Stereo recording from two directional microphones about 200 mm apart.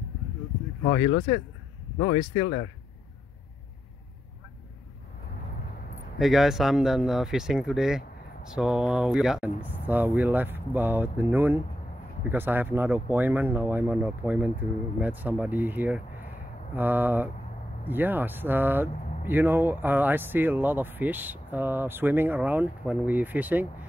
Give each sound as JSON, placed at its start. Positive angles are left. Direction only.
{"t": 0.8, "sound": "speech", "side_deg": 35}
{"t": 6.1, "sound": "speech", "side_deg": 0}